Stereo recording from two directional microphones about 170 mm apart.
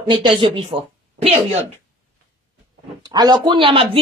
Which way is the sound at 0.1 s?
30° right (ahead or behind).